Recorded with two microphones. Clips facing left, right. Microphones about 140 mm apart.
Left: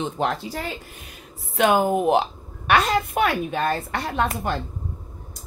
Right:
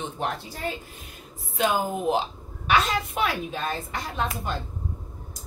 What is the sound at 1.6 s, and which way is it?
A woman's voice, 65° left (ahead or behind).